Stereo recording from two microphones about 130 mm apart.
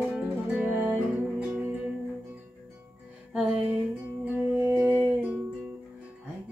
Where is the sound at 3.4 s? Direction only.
10° right (ahead or behind).